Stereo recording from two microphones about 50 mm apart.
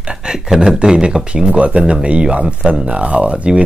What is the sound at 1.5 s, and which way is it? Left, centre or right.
Speech, right.